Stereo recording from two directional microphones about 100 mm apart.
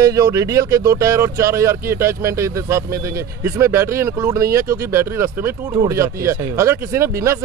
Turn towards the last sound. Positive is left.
turn(degrees=-25)  # may be behind; listen again after turning